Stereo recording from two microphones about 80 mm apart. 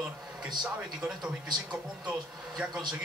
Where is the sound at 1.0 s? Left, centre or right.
Centre.